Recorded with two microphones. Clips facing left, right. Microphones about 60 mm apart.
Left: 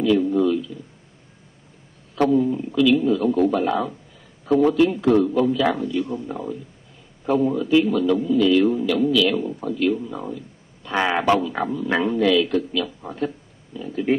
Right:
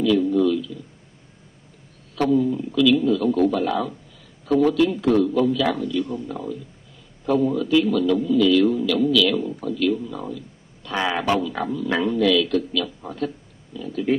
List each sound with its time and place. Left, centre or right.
0.0 s speech: left
2.1 s speech: centre